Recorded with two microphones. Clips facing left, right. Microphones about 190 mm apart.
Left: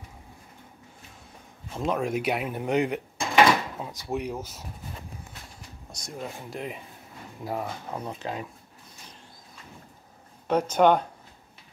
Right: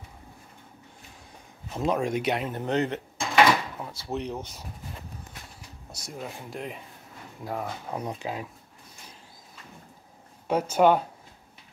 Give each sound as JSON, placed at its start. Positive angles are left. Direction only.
{"t": 1.7, "sound": "speech", "side_deg": 0}
{"t": 5.9, "sound": "speech", "side_deg": -5}
{"t": 7.9, "sound": "speech", "side_deg": -15}
{"t": 10.5, "sound": "speech", "side_deg": -5}